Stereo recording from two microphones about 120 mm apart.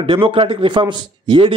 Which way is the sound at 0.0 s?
45° right (ahead or behind).